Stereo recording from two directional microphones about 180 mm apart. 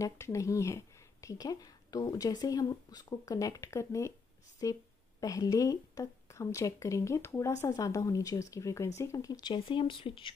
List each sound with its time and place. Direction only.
0.0 s speech: 15° left (ahead or behind)